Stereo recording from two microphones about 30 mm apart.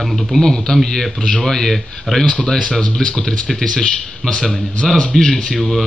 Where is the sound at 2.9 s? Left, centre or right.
Left.